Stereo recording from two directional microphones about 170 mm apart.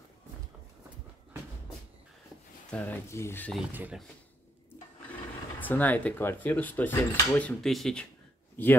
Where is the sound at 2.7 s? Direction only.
10° left (ahead or behind).